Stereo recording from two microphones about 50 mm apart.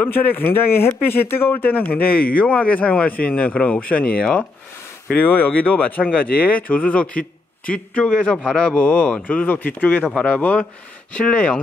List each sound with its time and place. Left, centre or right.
0.0 s speech: left
1.6 s speech: left
5.1 s speech: left; by 8.7 s centre
8.7 s speech: left